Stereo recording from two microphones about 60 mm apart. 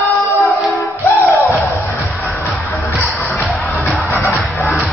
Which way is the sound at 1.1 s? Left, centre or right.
Left.